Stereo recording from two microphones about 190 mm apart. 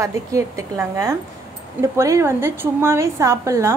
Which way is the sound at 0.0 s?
15° right (ahead or behind).